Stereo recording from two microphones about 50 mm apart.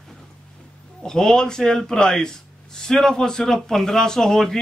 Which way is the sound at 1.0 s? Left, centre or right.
Centre.